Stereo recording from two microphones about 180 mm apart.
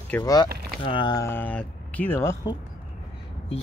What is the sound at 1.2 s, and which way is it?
Speech, 10° left (ahead or behind).